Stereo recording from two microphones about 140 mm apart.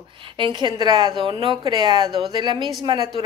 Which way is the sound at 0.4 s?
35° right (ahead or behind).